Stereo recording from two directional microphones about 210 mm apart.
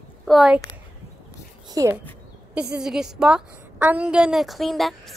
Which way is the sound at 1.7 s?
15° right (ahead or behind).